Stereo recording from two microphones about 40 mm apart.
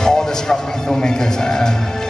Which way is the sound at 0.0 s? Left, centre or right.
Centre.